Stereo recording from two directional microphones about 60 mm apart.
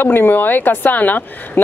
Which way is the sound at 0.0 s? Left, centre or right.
Left.